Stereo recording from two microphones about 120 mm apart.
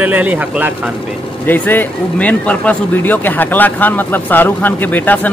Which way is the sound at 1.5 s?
15° left (ahead or behind).